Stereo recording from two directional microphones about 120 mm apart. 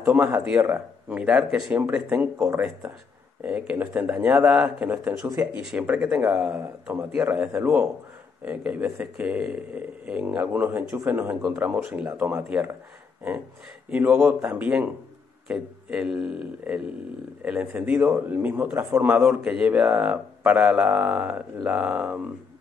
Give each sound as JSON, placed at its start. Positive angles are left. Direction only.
{"t": 0.0, "sound": "speech", "side_deg": -15}
{"t": 2.3, "sound": "speech", "side_deg": -20}
{"t": 3.4, "sound": "speech", "side_deg": -10}
{"t": 13.8, "sound": "a man's voice", "side_deg": -10}
{"t": 17.5, "sound": "speech", "side_deg": -10}